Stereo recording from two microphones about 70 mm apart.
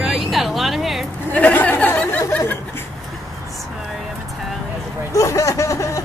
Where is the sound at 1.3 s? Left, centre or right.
Left.